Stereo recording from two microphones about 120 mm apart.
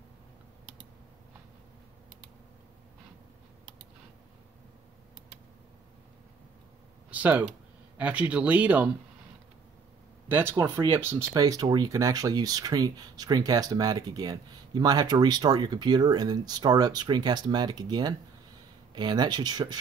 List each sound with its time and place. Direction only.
7.1 s a sound: 15° right (ahead or behind)
8.0 s speech: 10° right (ahead or behind)
10.2 s speech: 20° right (ahead or behind); by 19.8 s 35° right (ahead or behind)